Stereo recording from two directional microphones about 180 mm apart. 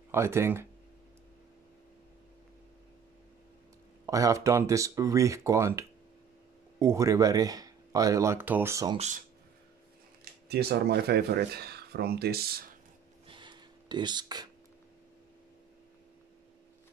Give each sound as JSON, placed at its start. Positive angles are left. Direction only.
{"t": 0.1, "sound": "speech", "side_deg": -15}
{"t": 4.0, "sound": "speech", "side_deg": -15}
{"t": 8.9, "sound": "speech", "side_deg": -40}
{"t": 10.5, "sound": "speech", "side_deg": -60}
{"t": 13.3, "sound": "a sound", "side_deg": -25}